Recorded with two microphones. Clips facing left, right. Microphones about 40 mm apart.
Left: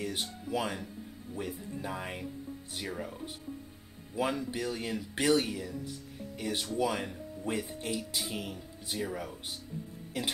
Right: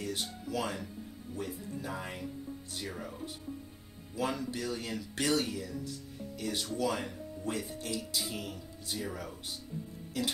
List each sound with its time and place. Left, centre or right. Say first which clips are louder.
0.0 s speech: left 1 dB; centre
2.9 s speech: left 4 dB; centre
4.2 s speech: left 2 dB; left
10.1 s speech: even; left